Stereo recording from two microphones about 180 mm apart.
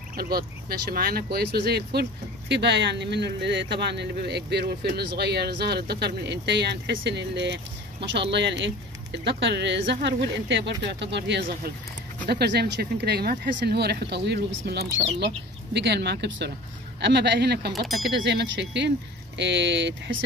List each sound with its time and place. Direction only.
0.1 s speech: 60° right (ahead or behind)
17.8 s speech: centre (ahead or behind)
18.1 s speech: 70° right (ahead or behind)